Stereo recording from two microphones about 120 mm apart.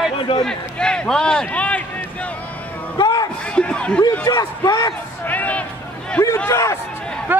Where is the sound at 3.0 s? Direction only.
30° left (ahead or behind).